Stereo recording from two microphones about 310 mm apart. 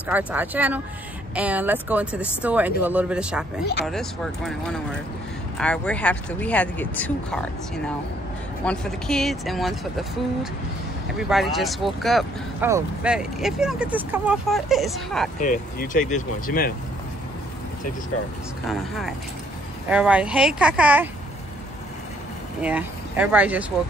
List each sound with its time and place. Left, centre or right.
0.1 s speech: centre
15.4 s speech: left
18.7 s speech: centre
22.6 s speech: centre